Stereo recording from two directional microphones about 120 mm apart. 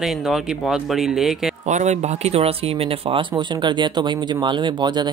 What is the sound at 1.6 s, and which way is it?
Speech, 85° right.